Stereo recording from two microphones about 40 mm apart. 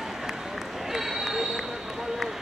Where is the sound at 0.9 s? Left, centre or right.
Centre.